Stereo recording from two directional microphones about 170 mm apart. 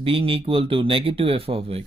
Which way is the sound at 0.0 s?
35° right (ahead or behind).